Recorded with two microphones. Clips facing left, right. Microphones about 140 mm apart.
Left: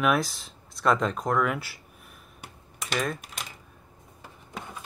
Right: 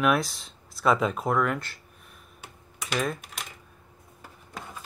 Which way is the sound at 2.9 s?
5° right (ahead or behind).